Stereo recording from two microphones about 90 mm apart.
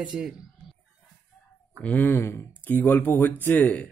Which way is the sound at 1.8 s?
20° left (ahead or behind).